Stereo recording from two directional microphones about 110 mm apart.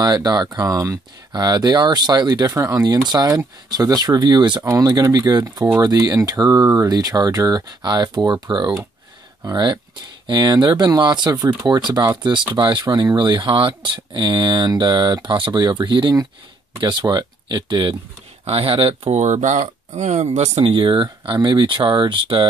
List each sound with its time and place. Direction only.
0.0 s speech: 35° right (ahead or behind)
2.5 s speech: 30° right (ahead or behind); by 17.9 s 45° right (ahead or behind)
18.4 s speech: 60° right (ahead or behind)